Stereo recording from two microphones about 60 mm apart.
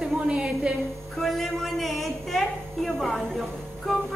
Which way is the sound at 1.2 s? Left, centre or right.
Centre.